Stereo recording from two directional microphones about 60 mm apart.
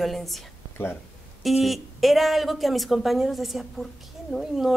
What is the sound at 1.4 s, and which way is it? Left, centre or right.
A woman's voice, centre.